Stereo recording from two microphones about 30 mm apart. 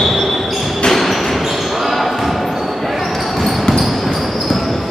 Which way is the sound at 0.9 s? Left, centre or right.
Centre.